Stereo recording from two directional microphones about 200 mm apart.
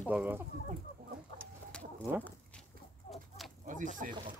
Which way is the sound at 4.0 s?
40° right (ahead or behind).